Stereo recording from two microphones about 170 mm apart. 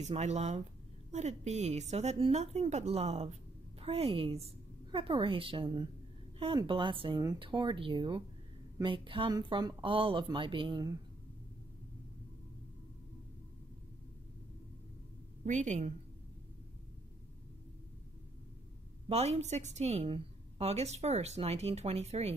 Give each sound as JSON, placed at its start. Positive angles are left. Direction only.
{"t": 0.0, "sound": "a woman's voice", "side_deg": -40}
{"t": 15.4, "sound": "speech", "side_deg": -45}
{"t": 19.0, "sound": "a woman's voice", "side_deg": -40}